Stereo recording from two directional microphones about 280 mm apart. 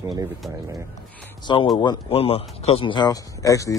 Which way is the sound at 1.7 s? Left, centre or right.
Centre.